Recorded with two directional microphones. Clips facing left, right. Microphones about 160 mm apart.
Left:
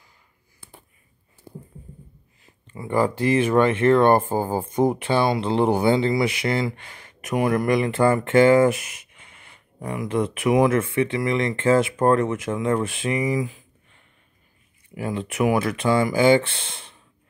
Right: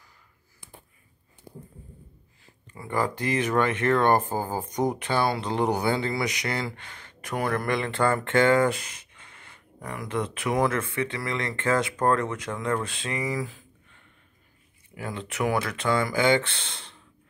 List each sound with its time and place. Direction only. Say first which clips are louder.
2.7 s speech: left 6 dB; 20° left (ahead or behind)
15.0 s speech: left 6 dB; 15° left (ahead or behind)